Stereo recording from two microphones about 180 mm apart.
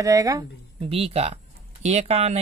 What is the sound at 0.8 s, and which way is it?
Speech, 30° right (ahead or behind).